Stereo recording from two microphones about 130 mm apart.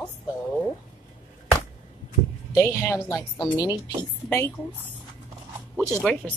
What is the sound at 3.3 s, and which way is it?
A woman's voice, 35° left (ahead or behind).